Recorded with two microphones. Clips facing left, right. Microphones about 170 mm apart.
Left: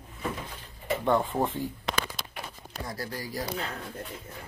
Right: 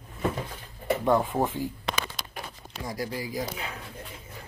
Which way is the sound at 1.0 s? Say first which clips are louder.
Right 1 dB; 10° right (ahead or behind).